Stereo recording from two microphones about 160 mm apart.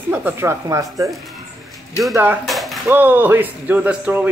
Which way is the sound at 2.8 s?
10° right (ahead or behind).